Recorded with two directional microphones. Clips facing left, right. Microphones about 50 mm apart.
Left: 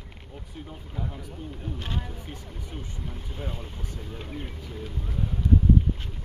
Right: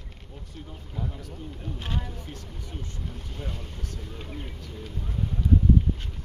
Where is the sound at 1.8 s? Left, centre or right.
Centre.